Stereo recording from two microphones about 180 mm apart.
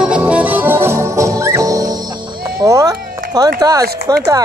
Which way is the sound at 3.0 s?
55° right (ahead or behind).